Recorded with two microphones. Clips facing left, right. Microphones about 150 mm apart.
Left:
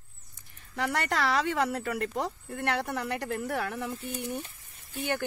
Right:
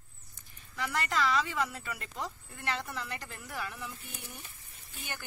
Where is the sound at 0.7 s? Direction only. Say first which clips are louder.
Left 4 dB; 65° left (ahead or behind).